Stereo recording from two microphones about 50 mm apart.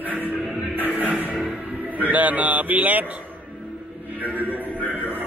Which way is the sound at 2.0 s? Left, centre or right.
Right.